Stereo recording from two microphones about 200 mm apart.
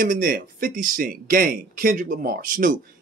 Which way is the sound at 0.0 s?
45° right (ahead or behind).